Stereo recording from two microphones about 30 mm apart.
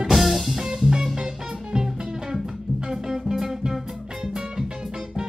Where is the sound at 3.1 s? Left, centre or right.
Centre.